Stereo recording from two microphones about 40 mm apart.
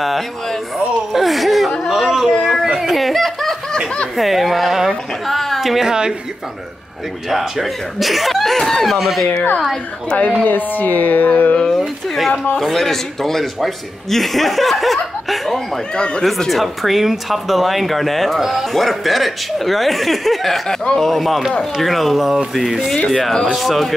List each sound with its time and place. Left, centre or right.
1.1 s a sound: centre
4.2 s speech: centre
5.9 s speech: centre
7.2 s speech: centre
8.9 s speech: centre
10.1 s speech: left
12.5 s speech: centre
15.9 s speech: left
16.2 s speech: centre
20.6 s speech: centre
23.0 s speech: centre